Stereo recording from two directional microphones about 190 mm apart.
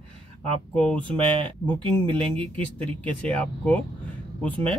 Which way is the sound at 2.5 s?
10° left (ahead or behind).